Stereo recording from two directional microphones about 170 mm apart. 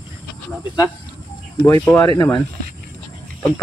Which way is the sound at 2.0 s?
20° left (ahead or behind).